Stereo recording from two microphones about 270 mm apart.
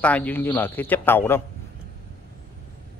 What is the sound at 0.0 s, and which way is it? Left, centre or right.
A man's voice, centre.